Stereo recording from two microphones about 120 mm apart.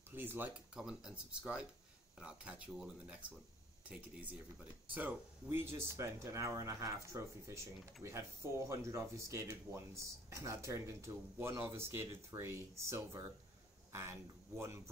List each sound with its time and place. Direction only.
0.1 s speech: 15° right (ahead or behind)
0.7 s speech: 5° right (ahead or behind); by 13.2 s 25° right (ahead or behind)